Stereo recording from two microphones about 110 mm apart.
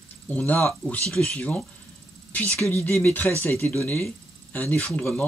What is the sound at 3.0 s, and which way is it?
Speech, 15° left (ahead or behind).